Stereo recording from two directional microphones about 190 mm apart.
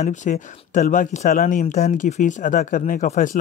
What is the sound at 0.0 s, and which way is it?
Speech, 40° left (ahead or behind).